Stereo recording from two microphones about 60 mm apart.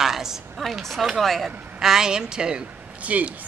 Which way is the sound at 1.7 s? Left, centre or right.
Centre.